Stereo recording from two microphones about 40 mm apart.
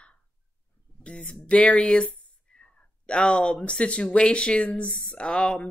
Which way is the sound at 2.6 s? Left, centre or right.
Left.